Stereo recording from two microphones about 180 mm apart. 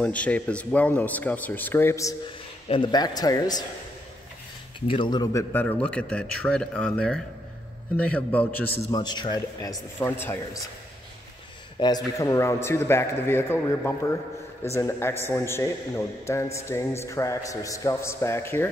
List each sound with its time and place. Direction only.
0.0 s a man's voice: 5° left (ahead or behind)
2.7 s a man's voice: 25° left (ahead or behind)
4.7 s a man's voice: 30° left (ahead or behind); by 8.7 s 10° left (ahead or behind)
8.9 s a man's voice: 25° left (ahead or behind)
11.8 s a man's voice: 20° left (ahead or behind)